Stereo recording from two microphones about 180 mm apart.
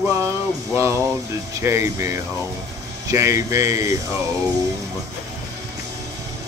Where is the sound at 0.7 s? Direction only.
15° right (ahead or behind).